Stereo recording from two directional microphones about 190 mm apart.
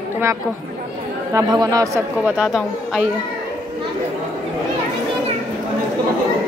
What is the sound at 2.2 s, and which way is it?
Speech, 5° right (ahead or behind).